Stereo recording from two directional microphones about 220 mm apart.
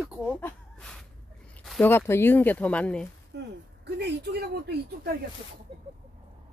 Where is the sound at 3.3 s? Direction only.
50° right (ahead or behind).